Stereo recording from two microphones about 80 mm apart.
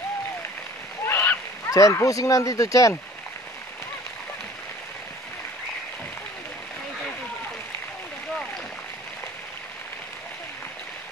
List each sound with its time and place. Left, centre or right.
1.0 s splash: left
1.7 s speech: left